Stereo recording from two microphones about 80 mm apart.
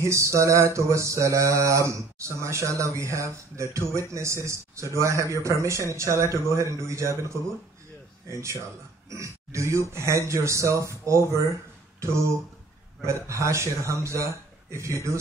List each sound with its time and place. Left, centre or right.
0.0 s mantra: right
13.0 s mantra: right
14.2 s speech: right